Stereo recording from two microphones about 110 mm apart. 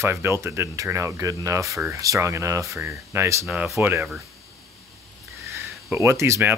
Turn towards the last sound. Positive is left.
turn(degrees=-25)  # may be behind; listen again after turning